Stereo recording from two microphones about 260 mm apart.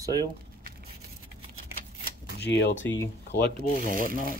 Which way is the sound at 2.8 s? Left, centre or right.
Centre.